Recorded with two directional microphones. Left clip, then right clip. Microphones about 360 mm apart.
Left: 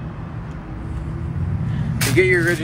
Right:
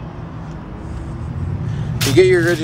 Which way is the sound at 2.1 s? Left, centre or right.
Centre.